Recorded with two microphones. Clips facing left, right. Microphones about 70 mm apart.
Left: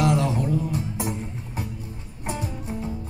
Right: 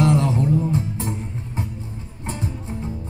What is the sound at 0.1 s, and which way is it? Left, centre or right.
Music, right.